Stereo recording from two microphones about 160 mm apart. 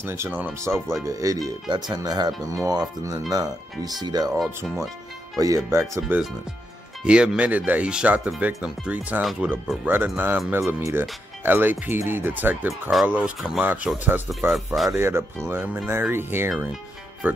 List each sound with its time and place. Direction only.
0.0 s speech: 15° right (ahead or behind)